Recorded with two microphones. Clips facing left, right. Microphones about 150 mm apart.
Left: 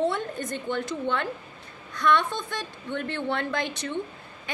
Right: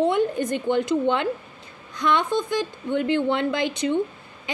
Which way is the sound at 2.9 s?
15° right (ahead or behind).